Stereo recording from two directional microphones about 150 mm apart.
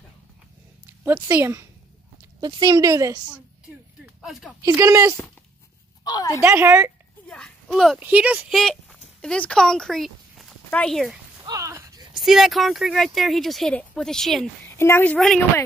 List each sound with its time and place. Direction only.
1.0 s speech: 10° right (ahead or behind)
2.4 s speech: 25° right (ahead or behind)
4.0 s a sound: centre (ahead or behind)
4.6 s speech: 20° right (ahead or behind)
6.0 s a woman's voice: 25° left (ahead or behind)
6.4 s speech: 15° right (ahead or behind)
7.2 s a sound: 5° left (ahead or behind)
8.0 s speech: 10° right (ahead or behind)
11.4 s a sound: 20° right (ahead or behind)
12.1 s speech: centre (ahead or behind)
14.8 s a woman's voice: 15° left (ahead or behind)
15.1 s speech: centre (ahead or behind)